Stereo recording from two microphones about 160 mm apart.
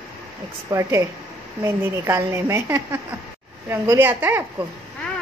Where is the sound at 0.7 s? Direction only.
20° right (ahead or behind).